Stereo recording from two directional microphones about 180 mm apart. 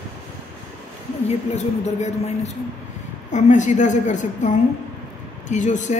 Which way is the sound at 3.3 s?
40° left (ahead or behind).